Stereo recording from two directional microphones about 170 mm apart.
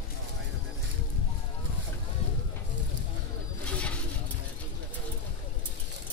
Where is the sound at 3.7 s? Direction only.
5° left (ahead or behind).